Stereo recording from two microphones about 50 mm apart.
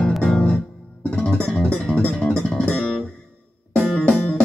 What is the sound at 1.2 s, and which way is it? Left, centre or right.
Music, centre.